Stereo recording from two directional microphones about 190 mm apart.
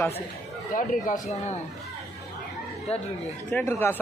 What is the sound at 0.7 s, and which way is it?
Speech, 45° left (ahead or behind).